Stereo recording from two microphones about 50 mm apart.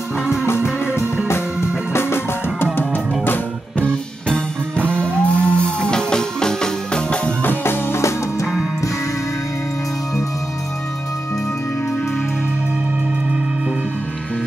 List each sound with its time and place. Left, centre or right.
2.0 s music: left
4.8 s music: left
7.4 s music: left